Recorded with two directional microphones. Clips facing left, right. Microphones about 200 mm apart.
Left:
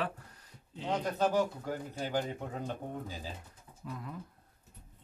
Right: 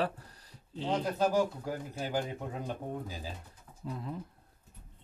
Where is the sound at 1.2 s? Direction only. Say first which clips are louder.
Right 1 dB; 10° right (ahead or behind).